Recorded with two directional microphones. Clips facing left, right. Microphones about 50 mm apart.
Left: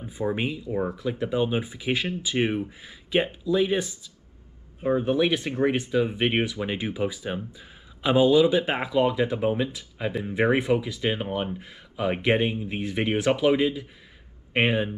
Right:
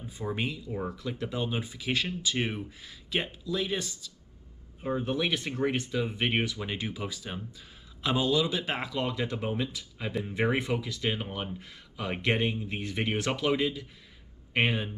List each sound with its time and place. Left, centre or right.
0.0 s speech: left